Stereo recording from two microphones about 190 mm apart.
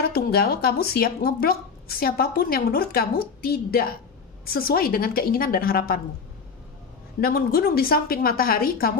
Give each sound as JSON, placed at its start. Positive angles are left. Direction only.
{"t": 0.1, "sound": "speech", "side_deg": 55}
{"t": 7.2, "sound": "speech", "side_deg": 50}